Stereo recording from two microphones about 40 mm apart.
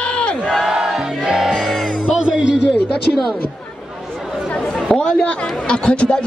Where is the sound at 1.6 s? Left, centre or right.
Centre.